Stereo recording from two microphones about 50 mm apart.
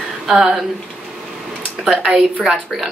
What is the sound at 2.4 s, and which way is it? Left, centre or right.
Speech, centre.